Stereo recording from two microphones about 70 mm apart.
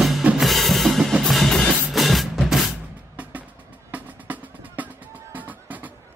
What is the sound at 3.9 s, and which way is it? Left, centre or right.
Music, right.